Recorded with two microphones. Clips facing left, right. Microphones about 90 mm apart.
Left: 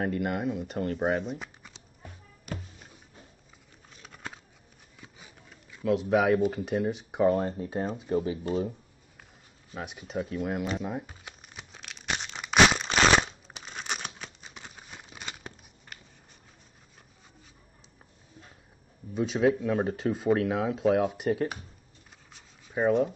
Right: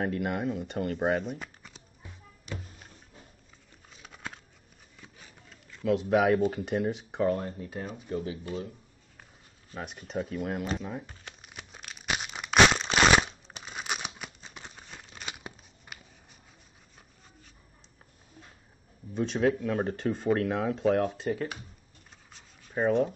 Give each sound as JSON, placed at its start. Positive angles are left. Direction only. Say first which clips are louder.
{"t": 0.0, "sound": "speech", "louder": "left 1 dB", "side_deg": 0}
{"t": 4.0, "sound": "a sound", "louder": "even", "side_deg": 0}
{"t": 5.0, "sound": "speech", "louder": "left 1 dB", "side_deg": 10}
{"t": 7.3, "sound": "speech", "louder": "left 6 dB", "side_deg": 35}
{"t": 9.7, "sound": "speech", "louder": "left 1 dB", "side_deg": 5}
{"t": 10.8, "sound": "speech", "louder": "left 3 dB", "side_deg": 15}
{"t": 11.4, "sound": "tearing", "louder": "right 2 dB", "side_deg": -5}
{"t": 13.5, "sound": "a sound", "louder": "right 1 dB", "side_deg": 0}
{"t": 15.2, "sound": "a sound", "louder": "right 1 dB", "side_deg": -10}
{"t": 19.1, "sound": "speech", "louder": "left 2 dB", "side_deg": 5}
{"t": 21.3, "sound": "speech", "louder": "left 4 dB", "side_deg": 25}
{"t": 22.3, "sound": "a sound", "louder": "left 1 dB", "side_deg": 5}